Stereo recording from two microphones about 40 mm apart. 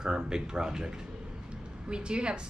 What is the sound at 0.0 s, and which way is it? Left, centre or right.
A woman's voice, centre.